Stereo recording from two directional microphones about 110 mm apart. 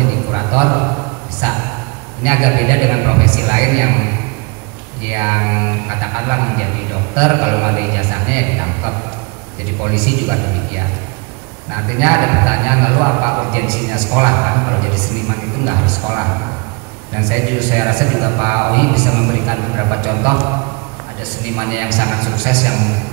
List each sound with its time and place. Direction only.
0.3 s a sound: 20° right (ahead or behind)
1.4 s a sound: 10° right (ahead or behind)
2.2 s a man's voice: 15° right (ahead or behind)
5.1 s a man's voice: 15° right (ahead or behind)
11.7 s a man's voice: 15° right (ahead or behind)
21.5 s a man's voice: 15° right (ahead or behind)